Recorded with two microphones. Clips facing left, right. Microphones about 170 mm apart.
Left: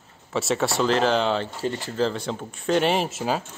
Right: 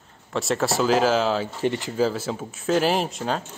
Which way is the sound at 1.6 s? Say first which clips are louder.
Right 2 dB; 15° right (ahead or behind).